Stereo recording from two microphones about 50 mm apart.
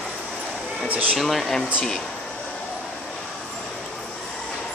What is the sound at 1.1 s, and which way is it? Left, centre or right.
Speech, centre.